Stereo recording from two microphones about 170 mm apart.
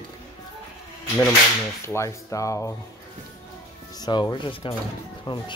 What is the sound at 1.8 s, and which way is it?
Speech, 15° left (ahead or behind).